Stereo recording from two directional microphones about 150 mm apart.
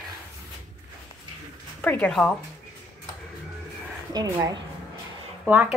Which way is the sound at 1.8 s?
5° left (ahead or behind).